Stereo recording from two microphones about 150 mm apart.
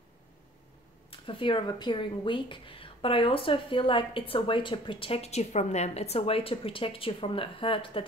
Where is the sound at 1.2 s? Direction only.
35° left (ahead or behind).